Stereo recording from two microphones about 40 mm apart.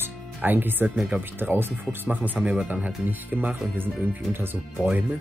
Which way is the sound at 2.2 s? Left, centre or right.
Right.